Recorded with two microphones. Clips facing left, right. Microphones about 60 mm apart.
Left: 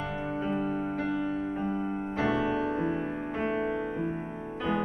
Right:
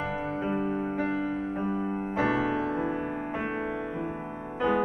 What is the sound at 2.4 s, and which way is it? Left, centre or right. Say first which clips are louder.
Music: even; right.